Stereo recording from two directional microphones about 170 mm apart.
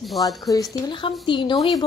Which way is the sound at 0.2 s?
20° left (ahead or behind).